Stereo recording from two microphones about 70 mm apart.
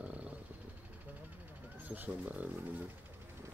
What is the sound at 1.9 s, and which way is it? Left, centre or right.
Speech, right.